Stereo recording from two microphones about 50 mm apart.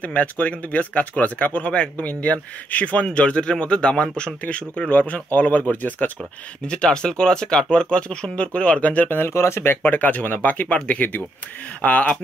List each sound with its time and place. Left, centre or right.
0.0 s speech: left
6.7 s speech: centre
9.3 s speech: left
9.8 s speech: left